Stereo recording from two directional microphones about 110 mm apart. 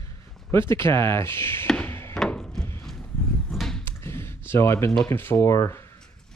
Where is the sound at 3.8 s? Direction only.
25° left (ahead or behind).